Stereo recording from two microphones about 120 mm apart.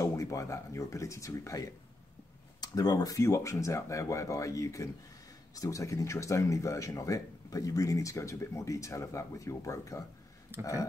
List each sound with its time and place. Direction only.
0.0 s speech: 25° left (ahead or behind)